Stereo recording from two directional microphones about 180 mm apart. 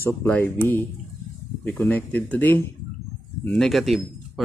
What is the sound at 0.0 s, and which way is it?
Speech, 15° left (ahead or behind).